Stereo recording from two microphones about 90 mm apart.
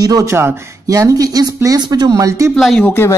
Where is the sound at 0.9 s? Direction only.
40° right (ahead or behind).